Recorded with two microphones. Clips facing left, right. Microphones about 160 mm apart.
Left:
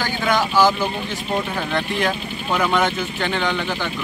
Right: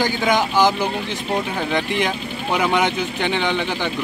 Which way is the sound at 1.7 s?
20° right (ahead or behind).